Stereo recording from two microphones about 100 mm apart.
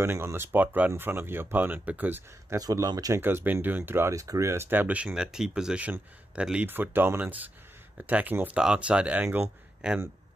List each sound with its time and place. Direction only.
0.0 s speech: 25° right (ahead or behind)
2.5 s speech: 35° right (ahead or behind)
3.2 s speech: 20° right (ahead or behind)